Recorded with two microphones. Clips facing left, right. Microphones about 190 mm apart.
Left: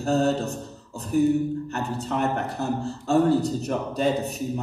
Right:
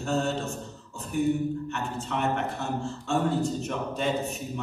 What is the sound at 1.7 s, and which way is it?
A man's voice, 35° left (ahead or behind).